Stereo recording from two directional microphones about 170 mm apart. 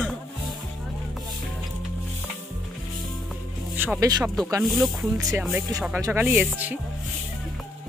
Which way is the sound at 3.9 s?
20° right (ahead or behind).